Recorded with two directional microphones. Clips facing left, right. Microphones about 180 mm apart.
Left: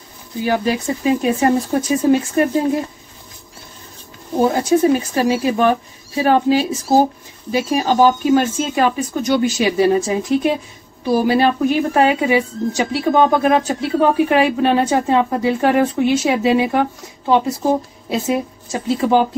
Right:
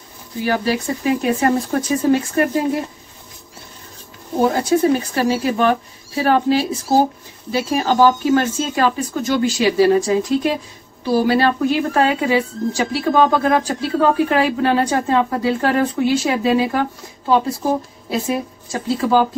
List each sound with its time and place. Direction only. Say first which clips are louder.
0.5 s a woman's voice: left 1 dB; 20° left (ahead or behind)
4.5 s a woman's voice: left 1 dB; 15° left (ahead or behind)
18.2 s a woman's voice: left 2 dB; 20° left (ahead or behind)